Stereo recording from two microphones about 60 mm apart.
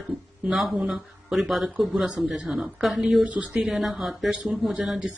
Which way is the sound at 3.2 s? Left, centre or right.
Centre.